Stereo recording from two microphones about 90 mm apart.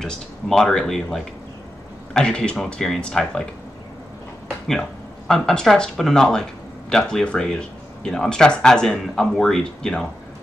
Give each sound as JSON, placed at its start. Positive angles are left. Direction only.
{"t": 0.0, "sound": "speech", "side_deg": 5}
{"t": 5.3, "sound": "speech", "side_deg": 5}